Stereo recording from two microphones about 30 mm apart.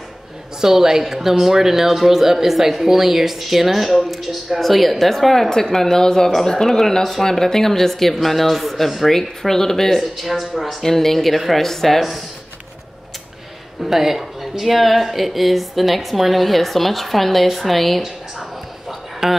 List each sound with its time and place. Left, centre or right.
0.6 s speech: centre
5.3 s speech: centre
9.9 s speech: centre
10.8 s speech: centre
13.8 s speech: centre
18.9 s a sound: centre